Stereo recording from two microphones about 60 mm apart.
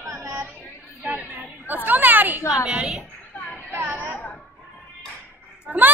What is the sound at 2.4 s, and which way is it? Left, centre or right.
Speech, left.